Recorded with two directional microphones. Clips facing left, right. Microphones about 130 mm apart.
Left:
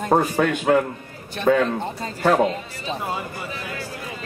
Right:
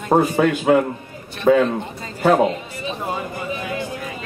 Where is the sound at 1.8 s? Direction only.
35° left (ahead or behind).